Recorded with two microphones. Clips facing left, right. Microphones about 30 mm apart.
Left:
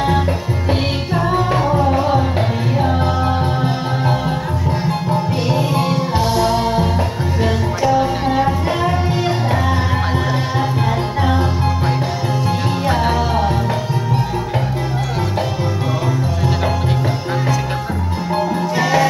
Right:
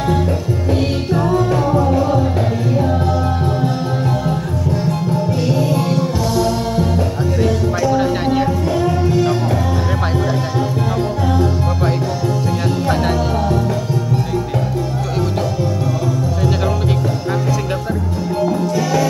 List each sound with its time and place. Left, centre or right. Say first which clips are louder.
0.7 s music: right 1 dB; left
18.8 s music: left 4 dB; left